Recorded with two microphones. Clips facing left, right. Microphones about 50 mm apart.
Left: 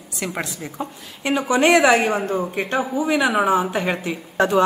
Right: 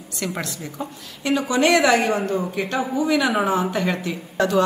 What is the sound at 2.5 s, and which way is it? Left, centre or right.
Speech, left.